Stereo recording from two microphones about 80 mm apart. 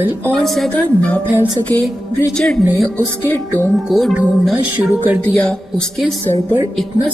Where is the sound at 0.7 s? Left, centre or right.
Centre.